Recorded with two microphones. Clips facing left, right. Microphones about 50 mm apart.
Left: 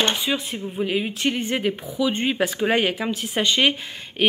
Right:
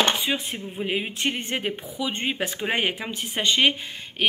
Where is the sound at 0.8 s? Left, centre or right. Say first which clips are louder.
Left 3 dB; right.